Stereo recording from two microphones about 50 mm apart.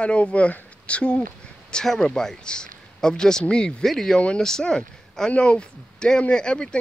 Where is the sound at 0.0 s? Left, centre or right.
Left.